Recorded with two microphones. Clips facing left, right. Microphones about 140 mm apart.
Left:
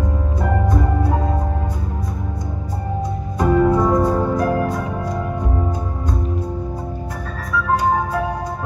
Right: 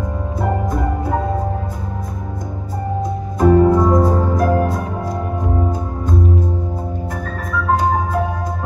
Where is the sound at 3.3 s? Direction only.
40° right (ahead or behind).